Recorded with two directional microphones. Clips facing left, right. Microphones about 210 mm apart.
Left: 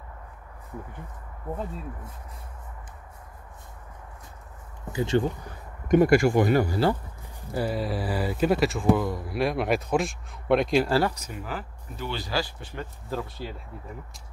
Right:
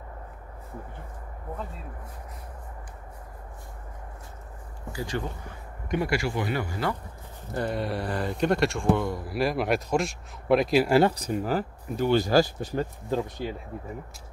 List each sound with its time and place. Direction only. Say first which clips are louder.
4.9 s speech: left 8 dB; 25° left (ahead or behind)
5.9 s speech: left 9 dB; 45° left (ahead or behind)
7.5 s speech: left 1 dB; 5° left (ahead or behind)
10.9 s speech: right 4 dB; 20° right (ahead or behind)
11.1 s speech: right 8 dB; 35° right (ahead or behind)
13.1 s speech: right 3 dB; 20° right (ahead or behind)